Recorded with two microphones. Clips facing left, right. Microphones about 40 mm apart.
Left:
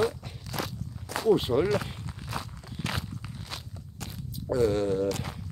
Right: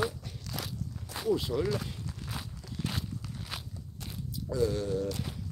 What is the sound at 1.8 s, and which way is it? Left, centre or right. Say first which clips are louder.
Walk: left 1 dB; left.